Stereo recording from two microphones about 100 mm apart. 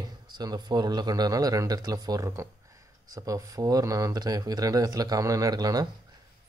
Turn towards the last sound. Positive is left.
turn(degrees=-40)  # may be behind; listen again after turning